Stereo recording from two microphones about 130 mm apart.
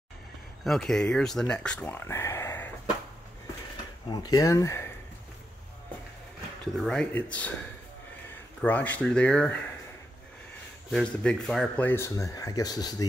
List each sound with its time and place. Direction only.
0.7 s speech: 5° left (ahead or behind)
4.1 s speech: 30° left (ahead or behind)
6.8 s speech: 5° left (ahead or behind)
8.6 s speech: 10° left (ahead or behind)
10.9 s speech: 5° left (ahead or behind); by 12.9 s 30° left (ahead or behind)